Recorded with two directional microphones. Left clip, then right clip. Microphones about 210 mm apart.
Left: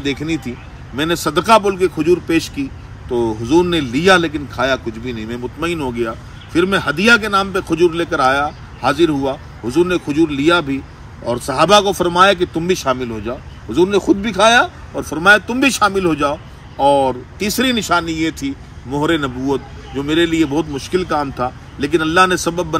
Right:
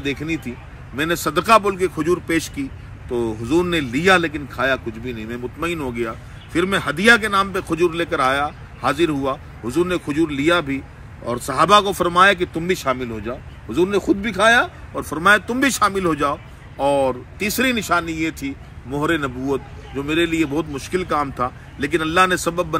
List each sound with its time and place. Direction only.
0.0 s speech: centre (ahead or behind)
3.1 s speech: 25° left (ahead or behind)
3.4 s speech: 5° right (ahead or behind)
16.8 s speech: centre (ahead or behind)